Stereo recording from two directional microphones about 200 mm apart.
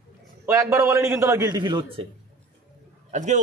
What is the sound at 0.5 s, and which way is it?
A man's voice, 15° right (ahead or behind).